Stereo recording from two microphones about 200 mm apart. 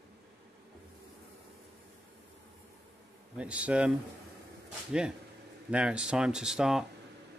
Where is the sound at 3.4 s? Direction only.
5° right (ahead or behind).